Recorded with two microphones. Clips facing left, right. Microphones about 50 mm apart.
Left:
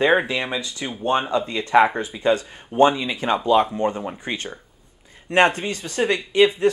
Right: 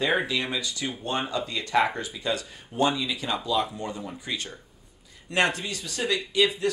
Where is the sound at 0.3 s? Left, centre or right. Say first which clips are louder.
Left 3 dB; left.